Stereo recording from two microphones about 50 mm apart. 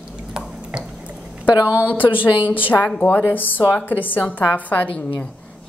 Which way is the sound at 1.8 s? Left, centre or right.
Left.